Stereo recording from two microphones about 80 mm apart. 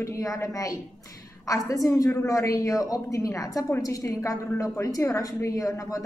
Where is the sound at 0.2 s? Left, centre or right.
Left.